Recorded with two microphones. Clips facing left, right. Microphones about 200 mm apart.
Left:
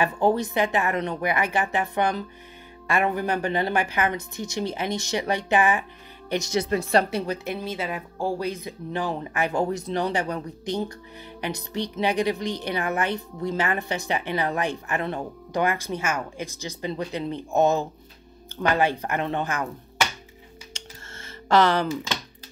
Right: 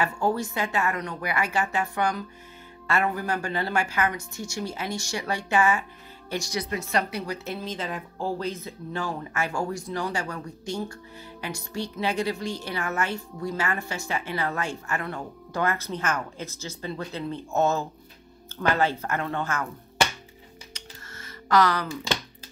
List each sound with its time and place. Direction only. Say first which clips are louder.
0.0 s a woman's voice: left 4 dB; 20° left (ahead or behind)
7.4 s a woman's voice: left 3 dB; 10° left (ahead or behind)
20.7 s a sound: left 3 dB; 25° left (ahead or behind)